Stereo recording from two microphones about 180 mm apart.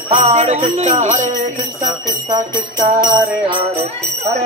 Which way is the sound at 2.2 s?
25° right (ahead or behind).